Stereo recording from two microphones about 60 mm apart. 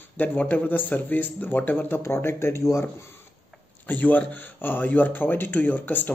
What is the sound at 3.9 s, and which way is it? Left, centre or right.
Speech, left.